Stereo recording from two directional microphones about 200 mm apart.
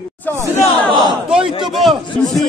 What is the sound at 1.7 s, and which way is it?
Speech, centre (ahead or behind).